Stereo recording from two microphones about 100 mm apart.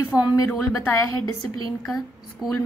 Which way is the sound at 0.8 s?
25° left (ahead or behind).